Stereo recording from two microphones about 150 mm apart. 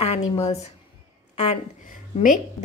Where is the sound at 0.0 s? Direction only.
45° left (ahead or behind).